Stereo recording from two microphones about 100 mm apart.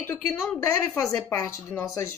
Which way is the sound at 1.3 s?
30° left (ahead or behind).